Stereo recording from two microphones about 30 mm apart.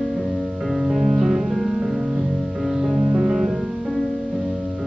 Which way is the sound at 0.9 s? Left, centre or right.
Centre.